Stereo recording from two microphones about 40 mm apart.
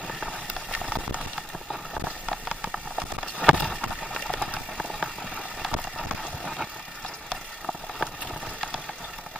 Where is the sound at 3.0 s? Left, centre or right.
Right.